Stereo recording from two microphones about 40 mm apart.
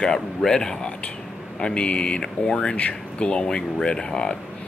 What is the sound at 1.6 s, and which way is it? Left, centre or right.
Speech, left.